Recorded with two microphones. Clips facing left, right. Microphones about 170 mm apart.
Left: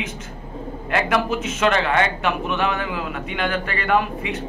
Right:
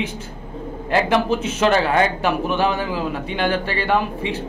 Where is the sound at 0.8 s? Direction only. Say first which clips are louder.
Right 3 dB; 30° right (ahead or behind).